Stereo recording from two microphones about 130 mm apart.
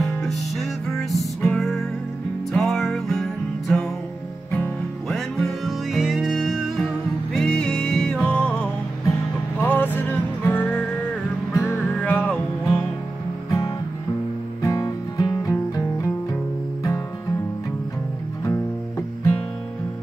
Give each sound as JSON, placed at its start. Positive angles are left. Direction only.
{"t": 0.2, "sound": "music", "side_deg": 0}
{"t": 5.0, "sound": "music", "side_deg": 0}
{"t": 13.5, "sound": "music", "side_deg": 25}
{"t": 18.4, "sound": "music", "side_deg": 20}